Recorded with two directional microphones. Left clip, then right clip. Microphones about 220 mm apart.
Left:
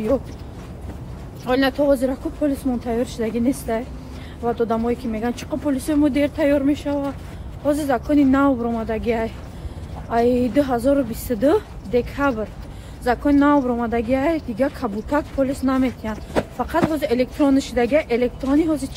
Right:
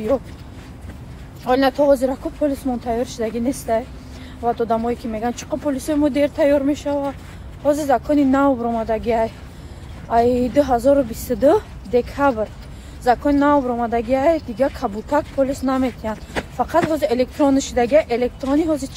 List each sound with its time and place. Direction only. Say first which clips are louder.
1.4 s a woman's voice: right 3 dB; 5° left (ahead or behind)